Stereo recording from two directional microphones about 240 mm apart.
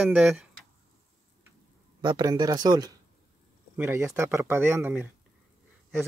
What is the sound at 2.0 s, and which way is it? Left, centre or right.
Speech, centre.